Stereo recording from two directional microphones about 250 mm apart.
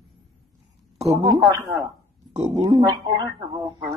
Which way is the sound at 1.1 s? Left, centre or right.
Centre.